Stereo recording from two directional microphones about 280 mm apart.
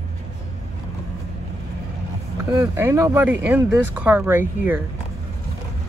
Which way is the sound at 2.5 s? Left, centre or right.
Centre.